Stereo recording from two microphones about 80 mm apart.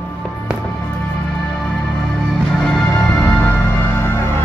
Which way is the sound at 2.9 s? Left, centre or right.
Left.